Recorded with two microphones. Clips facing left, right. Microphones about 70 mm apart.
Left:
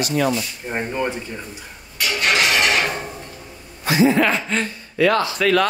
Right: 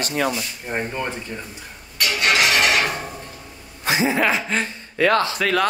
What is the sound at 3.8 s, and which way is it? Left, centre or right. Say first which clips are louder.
Speech: left 4 dB; right.